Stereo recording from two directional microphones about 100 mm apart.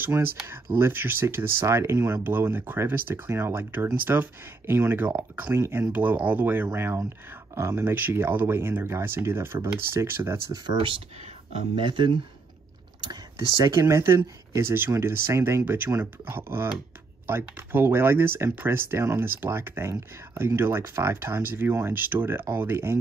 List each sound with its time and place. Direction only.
0.0 s speech: 20° right (ahead or behind)
10.8 s speech: 75° right (ahead or behind)
11.7 s speech: 55° right (ahead or behind)
13.7 s speech: 30° right (ahead or behind)